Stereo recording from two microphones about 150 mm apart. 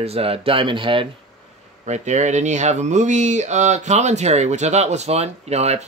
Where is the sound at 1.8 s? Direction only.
50° right (ahead or behind).